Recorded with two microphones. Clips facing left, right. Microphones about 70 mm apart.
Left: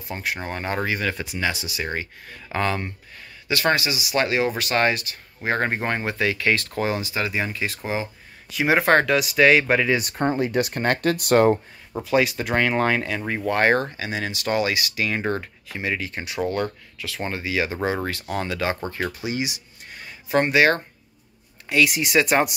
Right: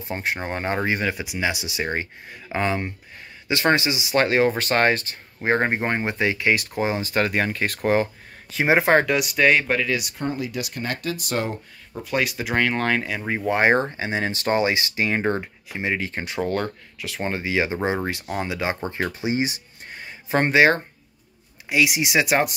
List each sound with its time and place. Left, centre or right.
0.1 s speech: right
1.1 s speech: centre
7.0 s speech: right
8.5 s speech: right
8.9 s speech: centre
9.9 s speech: left
12.0 s speech: centre
13.5 s speech: centre
13.9 s speech: right
17.9 s speech: centre
19.2 s speech: right
21.6 s speech: centre